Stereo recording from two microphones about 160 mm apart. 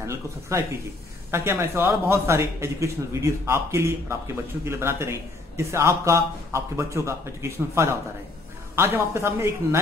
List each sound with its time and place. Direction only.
0.0 s a man's voice: 20° right (ahead or behind)